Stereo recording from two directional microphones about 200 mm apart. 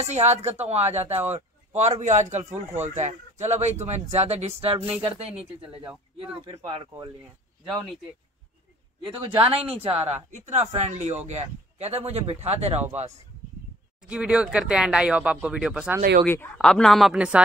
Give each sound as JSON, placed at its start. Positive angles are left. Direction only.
{"t": 0.0, "sound": "speech", "side_deg": -35}
{"t": 5.3, "sound": "speech", "side_deg": -5}
{"t": 9.1, "sound": "speech", "side_deg": -25}
{"t": 14.0, "sound": "speech", "side_deg": -5}
{"t": 16.3, "sound": "speech", "side_deg": 5}